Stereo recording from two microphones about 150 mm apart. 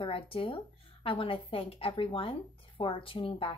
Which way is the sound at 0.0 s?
40° left (ahead or behind).